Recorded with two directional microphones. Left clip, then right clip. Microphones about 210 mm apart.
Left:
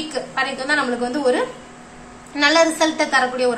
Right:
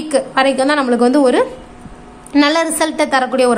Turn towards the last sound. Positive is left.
turn(degrees=-55)  # may be behind; listen again after turning